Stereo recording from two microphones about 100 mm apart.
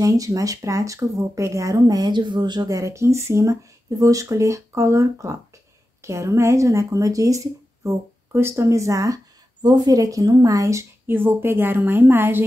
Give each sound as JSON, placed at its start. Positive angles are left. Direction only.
{"t": 0.0, "sound": "speech", "side_deg": -35}
{"t": 2.8, "sound": "speech", "side_deg": -30}